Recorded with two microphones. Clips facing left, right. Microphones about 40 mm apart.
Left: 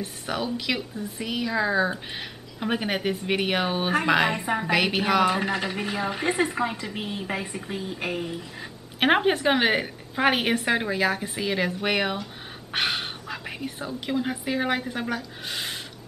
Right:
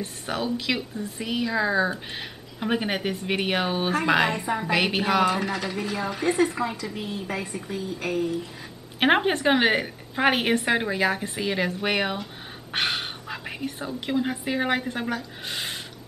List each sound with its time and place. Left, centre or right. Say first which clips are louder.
0.3 s speech: right 1 dB; centre
4.3 s speech: even; left
4.6 s speech: even; centre
5.4 s a woman's voice: left 1 dB; left
9.0 s speech: even; centre